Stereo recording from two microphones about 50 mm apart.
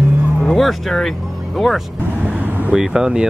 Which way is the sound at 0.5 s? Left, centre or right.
Centre.